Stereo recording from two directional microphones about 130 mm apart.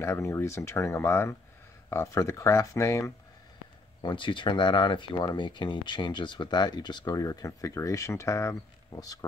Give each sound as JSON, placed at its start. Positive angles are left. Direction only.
{"t": 0.0, "sound": "speech", "side_deg": 25}
{"t": 4.0, "sound": "speech", "side_deg": 40}